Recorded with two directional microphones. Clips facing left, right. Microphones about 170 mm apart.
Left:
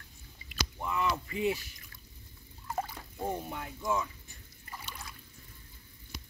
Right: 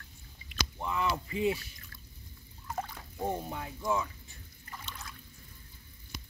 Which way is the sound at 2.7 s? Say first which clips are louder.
Left 2 dB; 5° left (ahead or behind).